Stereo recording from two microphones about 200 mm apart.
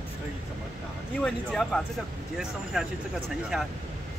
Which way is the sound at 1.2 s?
5° left (ahead or behind).